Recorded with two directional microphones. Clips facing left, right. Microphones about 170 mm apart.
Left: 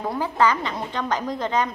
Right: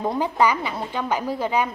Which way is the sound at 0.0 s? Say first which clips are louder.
Right 1 dB; 20° right (ahead or behind).